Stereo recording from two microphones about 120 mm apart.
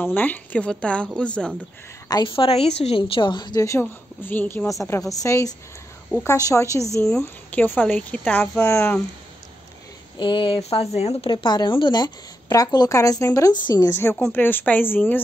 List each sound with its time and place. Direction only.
0.0 s speech: 15° left (ahead or behind)
2.2 s a woman's voice: 45° left (ahead or behind)
3.8 s a woman's voice: 15° left (ahead or behind)
7.1 s speech: 5° left (ahead or behind); by 8.9 s 20° left (ahead or behind)
10.1 s a woman's voice: 45° left (ahead or behind)
10.6 s speech: 60° left (ahead or behind)
11.2 s a woman's voice: 40° left (ahead or behind)
14.3 s speech: 15° left (ahead or behind)